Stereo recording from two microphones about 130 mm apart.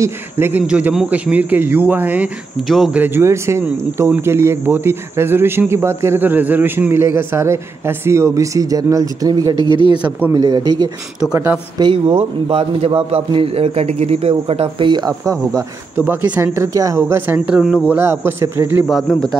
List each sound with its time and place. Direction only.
0.0 s speech: 15° right (ahead or behind)
2.7 s speech: centre (ahead or behind)
3.0 s speech: 20° right (ahead or behind)
9.6 s speech: 40° left (ahead or behind)
10.3 s speech: 30° right (ahead or behind)
11.8 s a man's voice: 40° right (ahead or behind)
16.0 s speech: 15° right (ahead or behind)
17.6 s speech: 5° right (ahead or behind)
17.9 s speech: 20° right (ahead or behind)
18.9 s speech: centre (ahead or behind)